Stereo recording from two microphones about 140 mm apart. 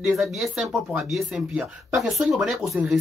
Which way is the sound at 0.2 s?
Centre (ahead or behind).